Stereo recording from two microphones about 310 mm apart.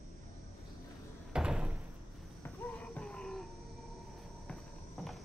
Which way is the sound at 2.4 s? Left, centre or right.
Centre.